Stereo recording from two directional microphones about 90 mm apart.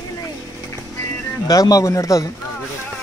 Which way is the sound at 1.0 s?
25° left (ahead or behind).